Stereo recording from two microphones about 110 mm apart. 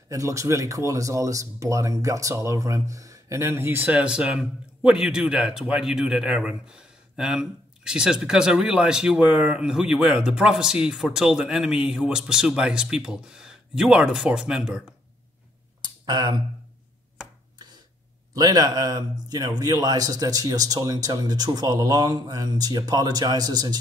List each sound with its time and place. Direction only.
0.1 s speech: 30° right (ahead or behind); by 14.8 s 5° right (ahead or behind)
15.8 s a sound: 40° right (ahead or behind)
18.3 s a man's voice: 35° right (ahead or behind)